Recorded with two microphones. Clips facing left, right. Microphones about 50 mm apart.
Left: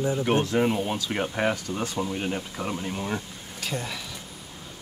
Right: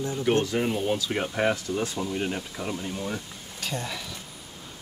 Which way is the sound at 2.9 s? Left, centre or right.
Left.